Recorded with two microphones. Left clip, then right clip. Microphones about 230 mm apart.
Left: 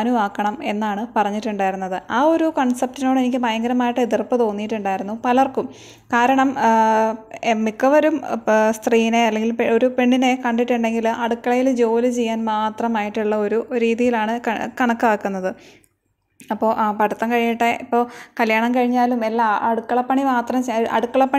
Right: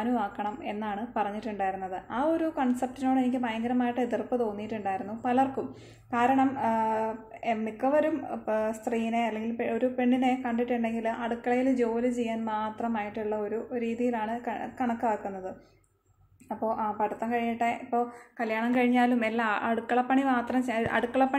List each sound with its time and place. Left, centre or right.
0.0 s a woman's voice: left
18.7 s a woman's voice: left